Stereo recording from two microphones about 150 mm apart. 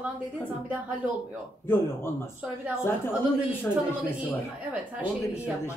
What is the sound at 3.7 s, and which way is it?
Speech, 10° left (ahead or behind).